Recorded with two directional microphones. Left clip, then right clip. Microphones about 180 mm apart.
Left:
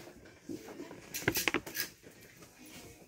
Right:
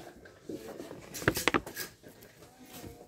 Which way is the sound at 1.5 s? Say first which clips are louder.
Right 5 dB; 60° right (ahead or behind).